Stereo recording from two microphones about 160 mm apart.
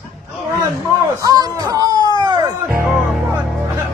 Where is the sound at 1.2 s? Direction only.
25° right (ahead or behind).